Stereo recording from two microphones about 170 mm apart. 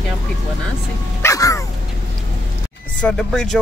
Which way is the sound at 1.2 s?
20° left (ahead or behind).